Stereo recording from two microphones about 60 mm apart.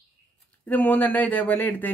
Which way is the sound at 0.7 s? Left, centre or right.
Left.